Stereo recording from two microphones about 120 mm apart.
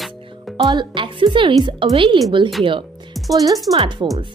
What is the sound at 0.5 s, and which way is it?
A woman's voice, 45° right (ahead or behind).